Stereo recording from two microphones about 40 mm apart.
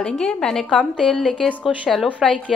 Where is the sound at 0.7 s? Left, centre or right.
Centre.